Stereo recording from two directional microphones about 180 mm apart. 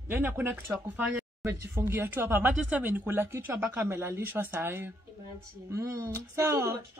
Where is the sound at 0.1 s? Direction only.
10° right (ahead or behind).